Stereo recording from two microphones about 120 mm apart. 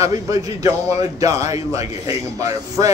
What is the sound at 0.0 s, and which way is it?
Speech, 30° right (ahead or behind).